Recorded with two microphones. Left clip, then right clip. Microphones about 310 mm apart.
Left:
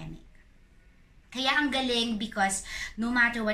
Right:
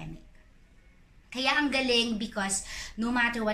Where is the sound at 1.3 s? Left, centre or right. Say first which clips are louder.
Even; centre.